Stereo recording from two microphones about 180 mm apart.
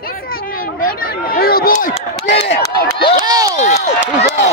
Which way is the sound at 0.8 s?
55° left (ahead or behind).